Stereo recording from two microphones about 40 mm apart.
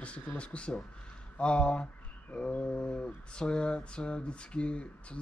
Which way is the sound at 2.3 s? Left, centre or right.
Left.